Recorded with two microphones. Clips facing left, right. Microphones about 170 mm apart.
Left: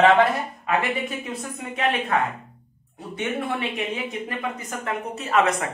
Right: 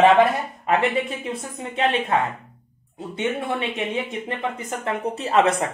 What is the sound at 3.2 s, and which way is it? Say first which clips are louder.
Speech: right 2 dB; 25° right (ahead or behind).